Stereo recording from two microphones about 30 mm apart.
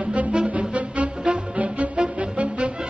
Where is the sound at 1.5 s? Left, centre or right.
Right.